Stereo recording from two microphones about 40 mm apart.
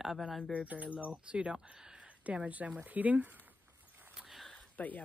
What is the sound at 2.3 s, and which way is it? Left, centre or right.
Speech, right.